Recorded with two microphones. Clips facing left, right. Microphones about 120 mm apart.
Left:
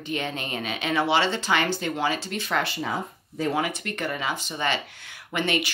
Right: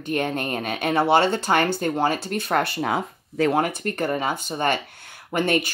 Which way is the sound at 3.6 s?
40° right (ahead or behind).